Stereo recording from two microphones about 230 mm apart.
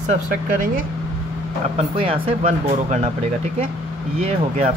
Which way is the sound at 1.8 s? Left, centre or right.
Right.